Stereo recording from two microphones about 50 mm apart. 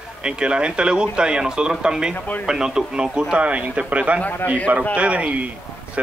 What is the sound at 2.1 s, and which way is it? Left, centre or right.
Speech, left.